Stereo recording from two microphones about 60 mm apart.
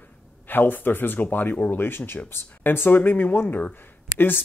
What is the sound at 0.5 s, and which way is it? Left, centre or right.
Speech, left.